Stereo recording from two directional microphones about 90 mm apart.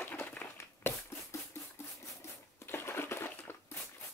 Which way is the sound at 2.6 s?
25° left (ahead or behind).